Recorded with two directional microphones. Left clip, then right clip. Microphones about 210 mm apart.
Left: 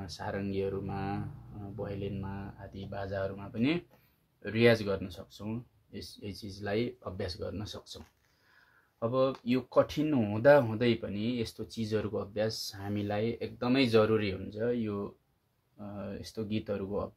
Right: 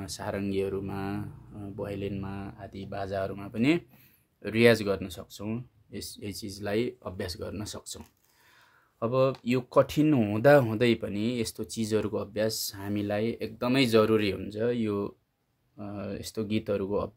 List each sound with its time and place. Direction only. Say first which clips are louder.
0.0 s speech: right 4 dB; 45° right (ahead or behind)
9.0 s speech: right 3 dB; 55° right (ahead or behind)